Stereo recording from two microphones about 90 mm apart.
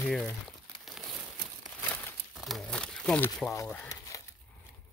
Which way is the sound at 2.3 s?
Centre (ahead or behind).